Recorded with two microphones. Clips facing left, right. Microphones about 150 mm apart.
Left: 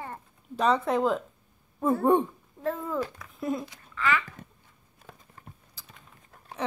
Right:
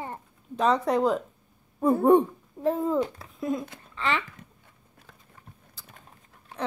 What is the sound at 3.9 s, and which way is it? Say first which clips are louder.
Speech: left 1 dB; 25° right (ahead or behind).